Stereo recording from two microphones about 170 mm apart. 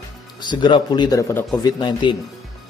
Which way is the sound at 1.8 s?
30° left (ahead or behind).